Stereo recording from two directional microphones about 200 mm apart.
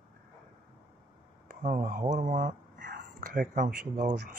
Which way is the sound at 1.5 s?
40° right (ahead or behind).